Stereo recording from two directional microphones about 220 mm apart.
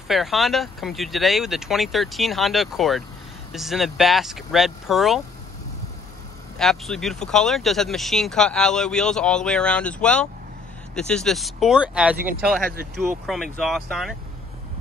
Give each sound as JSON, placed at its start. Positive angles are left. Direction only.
{"t": 0.1, "sound": "speech", "side_deg": 0}
{"t": 6.6, "sound": "speech", "side_deg": 0}